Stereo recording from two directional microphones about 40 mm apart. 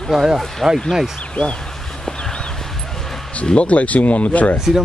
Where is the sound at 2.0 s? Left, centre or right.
Centre.